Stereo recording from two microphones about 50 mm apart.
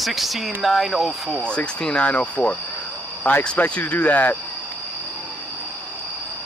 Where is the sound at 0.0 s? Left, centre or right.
Centre.